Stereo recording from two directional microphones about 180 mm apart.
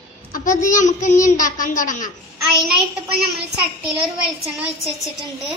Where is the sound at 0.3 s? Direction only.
45° left (ahead or behind).